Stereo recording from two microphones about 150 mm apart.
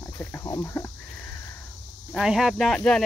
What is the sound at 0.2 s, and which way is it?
Speech, 20° left (ahead or behind).